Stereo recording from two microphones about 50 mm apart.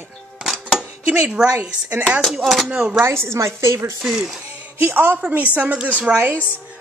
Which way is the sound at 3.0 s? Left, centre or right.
Right.